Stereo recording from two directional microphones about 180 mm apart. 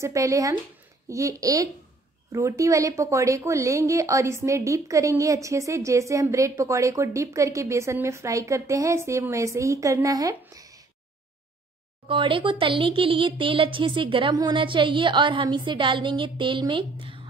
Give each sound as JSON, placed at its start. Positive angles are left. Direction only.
{"t": 0.0, "sound": "speech", "side_deg": -20}
{"t": 12.1, "sound": "speech", "side_deg": -30}